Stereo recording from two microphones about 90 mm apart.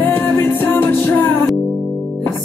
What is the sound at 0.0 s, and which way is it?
Music, 20° left (ahead or behind).